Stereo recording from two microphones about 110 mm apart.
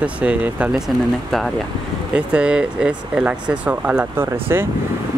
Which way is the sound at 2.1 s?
10° right (ahead or behind).